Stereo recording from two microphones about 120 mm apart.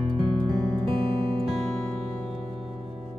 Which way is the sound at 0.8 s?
50° right (ahead or behind).